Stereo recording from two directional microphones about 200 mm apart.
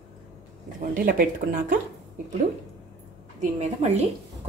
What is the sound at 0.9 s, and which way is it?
Speech, 45° right (ahead or behind).